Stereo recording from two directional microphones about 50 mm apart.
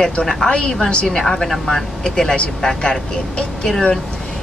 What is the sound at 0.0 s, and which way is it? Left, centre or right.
Speech, centre.